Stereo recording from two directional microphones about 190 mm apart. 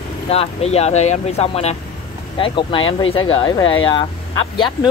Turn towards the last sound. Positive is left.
turn(degrees=25)  # may be behind; listen again after turning